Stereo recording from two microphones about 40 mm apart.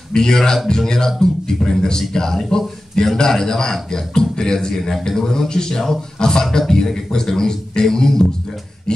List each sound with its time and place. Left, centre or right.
0.1 s a man's voice: centre